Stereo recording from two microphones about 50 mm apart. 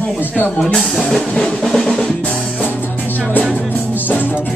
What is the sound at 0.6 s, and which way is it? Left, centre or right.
Speech, centre.